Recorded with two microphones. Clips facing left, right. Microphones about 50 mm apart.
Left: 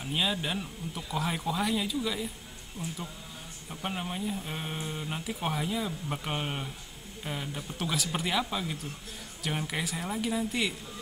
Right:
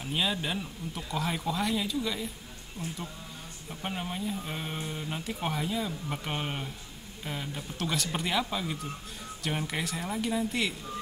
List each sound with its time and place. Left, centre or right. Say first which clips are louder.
0.0 s speech: even; centre
2.8 s speech: even; centre
3.8 s speech: even; centre